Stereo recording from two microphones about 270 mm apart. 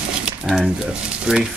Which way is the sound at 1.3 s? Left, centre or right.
Centre.